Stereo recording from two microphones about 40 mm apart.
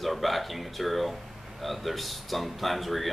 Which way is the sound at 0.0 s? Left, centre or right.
Centre.